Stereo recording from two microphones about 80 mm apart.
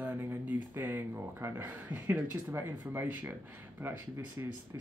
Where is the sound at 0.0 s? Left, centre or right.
Right.